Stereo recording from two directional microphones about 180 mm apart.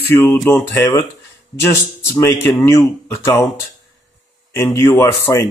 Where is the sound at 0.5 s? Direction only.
15° left (ahead or behind).